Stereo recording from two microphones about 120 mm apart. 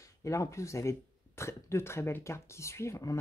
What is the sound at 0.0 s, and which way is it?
Speech, 25° left (ahead or behind).